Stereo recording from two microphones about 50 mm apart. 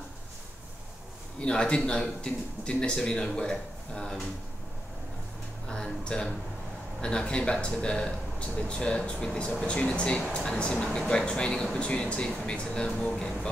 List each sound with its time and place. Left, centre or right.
1.4 s speech: centre
5.7 s speech: centre